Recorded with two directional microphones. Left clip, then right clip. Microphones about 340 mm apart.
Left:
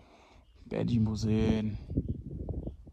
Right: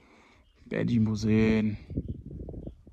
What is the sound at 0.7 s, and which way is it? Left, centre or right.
Speech, centre.